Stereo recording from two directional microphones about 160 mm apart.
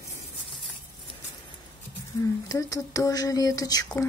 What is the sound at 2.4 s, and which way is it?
Speech, 20° left (ahead or behind).